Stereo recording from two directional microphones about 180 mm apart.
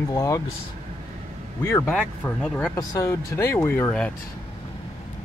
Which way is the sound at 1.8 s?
5° left (ahead or behind).